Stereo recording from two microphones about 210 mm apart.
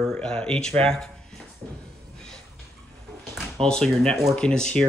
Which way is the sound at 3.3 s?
Centre (ahead or behind).